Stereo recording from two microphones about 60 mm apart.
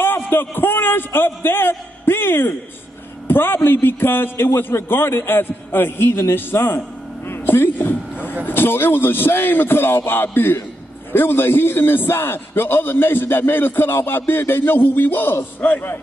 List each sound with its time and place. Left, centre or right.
0.0 s a man's voice: left